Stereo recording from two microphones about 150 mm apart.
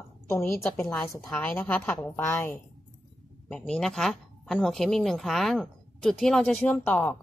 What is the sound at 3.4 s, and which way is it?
A woman's voice, 5° left (ahead or behind).